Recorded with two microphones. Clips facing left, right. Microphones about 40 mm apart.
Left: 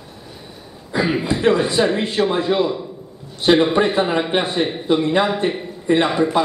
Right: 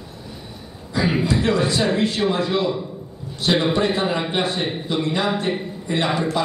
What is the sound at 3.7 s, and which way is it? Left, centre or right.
A man's voice, left.